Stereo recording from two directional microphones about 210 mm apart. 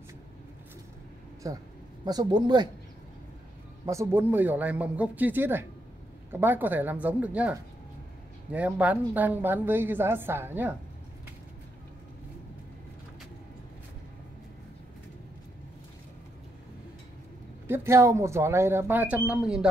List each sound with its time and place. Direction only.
1.4 s a woman's voice: 15° right (ahead or behind)
3.8 s a woman's voice: 15° right (ahead or behind)
17.6 s a woman's voice: 10° right (ahead or behind)